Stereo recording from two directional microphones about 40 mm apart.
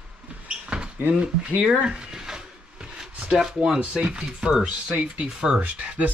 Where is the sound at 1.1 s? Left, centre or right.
Right.